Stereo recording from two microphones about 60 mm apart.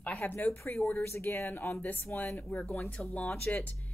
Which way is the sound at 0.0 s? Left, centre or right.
Left.